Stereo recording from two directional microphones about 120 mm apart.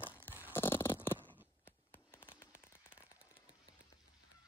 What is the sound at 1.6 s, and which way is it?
Fireworks, 20° left (ahead or behind).